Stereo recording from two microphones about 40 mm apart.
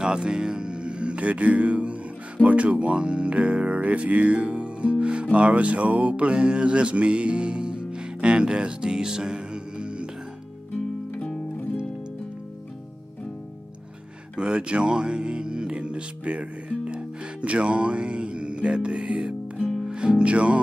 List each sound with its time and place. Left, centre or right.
0.0 s speech: centre
8.9 s music: centre
14.3 s speech: right
19.9 s music: right